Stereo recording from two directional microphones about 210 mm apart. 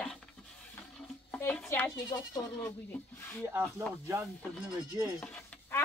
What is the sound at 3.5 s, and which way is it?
Speech, 10° right (ahead or behind).